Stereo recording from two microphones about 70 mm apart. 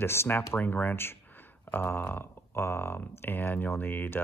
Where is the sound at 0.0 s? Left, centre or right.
Left.